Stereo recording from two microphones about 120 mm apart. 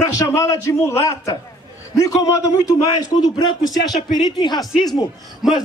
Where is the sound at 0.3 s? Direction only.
20° left (ahead or behind).